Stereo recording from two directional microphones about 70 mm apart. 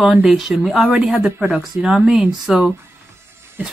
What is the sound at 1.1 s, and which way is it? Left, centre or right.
Speech, centre.